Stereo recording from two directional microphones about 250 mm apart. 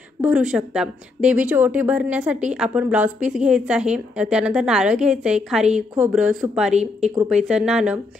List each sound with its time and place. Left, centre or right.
0.2 s a woman's voice: centre
6.7 s speech: right
7.4 s a woman's voice: centre